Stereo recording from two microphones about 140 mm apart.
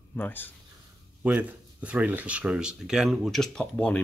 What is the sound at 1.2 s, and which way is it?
Speech, 10° right (ahead or behind).